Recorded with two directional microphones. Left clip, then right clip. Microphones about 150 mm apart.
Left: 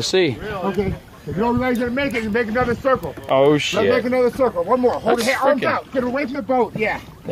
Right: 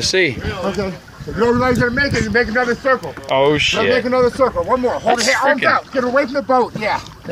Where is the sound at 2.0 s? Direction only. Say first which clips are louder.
Right 4 dB; 55° left (ahead or behind).